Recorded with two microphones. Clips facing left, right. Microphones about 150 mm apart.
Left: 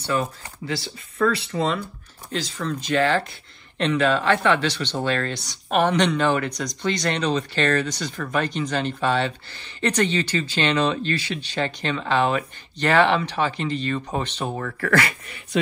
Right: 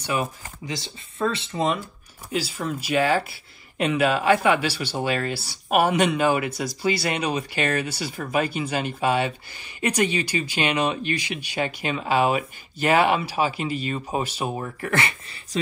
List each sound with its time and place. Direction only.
0.0 s speech: 10° right (ahead or behind)
2.3 s speech: 10° right (ahead or behind)
14.6 s speech: 20° right (ahead or behind)